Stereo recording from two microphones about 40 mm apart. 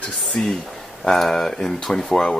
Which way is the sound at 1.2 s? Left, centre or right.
Centre.